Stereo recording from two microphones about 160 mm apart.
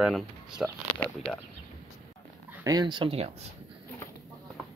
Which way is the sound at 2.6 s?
25° right (ahead or behind).